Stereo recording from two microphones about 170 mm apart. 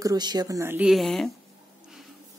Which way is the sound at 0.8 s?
Centre (ahead or behind).